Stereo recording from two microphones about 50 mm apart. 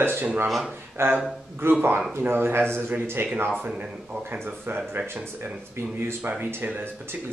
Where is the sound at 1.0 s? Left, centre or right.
Right.